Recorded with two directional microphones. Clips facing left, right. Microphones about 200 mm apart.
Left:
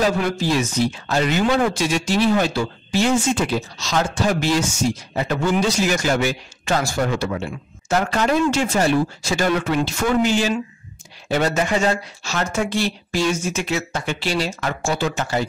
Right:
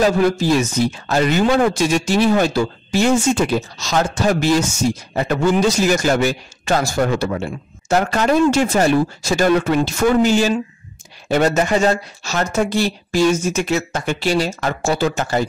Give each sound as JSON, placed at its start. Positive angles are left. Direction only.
{"t": 0.2, "sound": "speech", "side_deg": -45}